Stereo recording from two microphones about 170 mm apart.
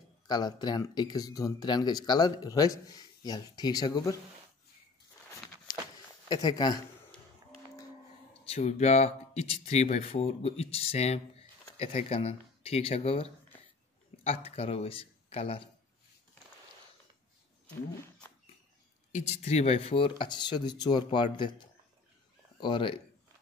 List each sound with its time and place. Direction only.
0.3 s speech: 25° left (ahead or behind)
6.2 s speech: 25° left (ahead or behind)
8.5 s speech: 40° left (ahead or behind)
19.1 s speech: 40° left (ahead or behind)